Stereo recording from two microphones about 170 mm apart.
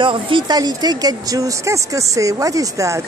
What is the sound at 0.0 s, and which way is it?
Speech, 30° right (ahead or behind).